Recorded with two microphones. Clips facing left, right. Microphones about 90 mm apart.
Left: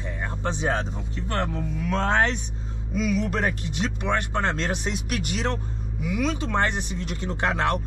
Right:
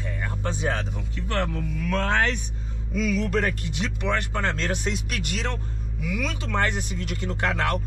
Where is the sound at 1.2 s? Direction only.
5° left (ahead or behind).